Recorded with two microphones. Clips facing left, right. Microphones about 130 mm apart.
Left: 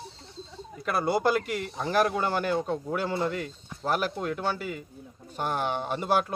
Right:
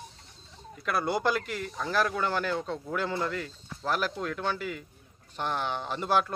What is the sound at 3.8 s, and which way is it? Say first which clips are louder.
Speech: left 2 dB; 45° left (ahead or behind).